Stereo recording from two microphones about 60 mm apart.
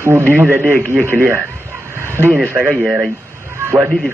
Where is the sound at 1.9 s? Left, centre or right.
Right.